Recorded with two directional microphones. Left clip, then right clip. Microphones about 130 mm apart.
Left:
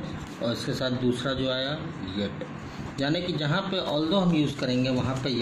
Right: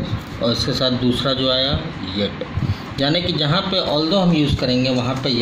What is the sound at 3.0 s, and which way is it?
A man's voice, 40° right (ahead or behind).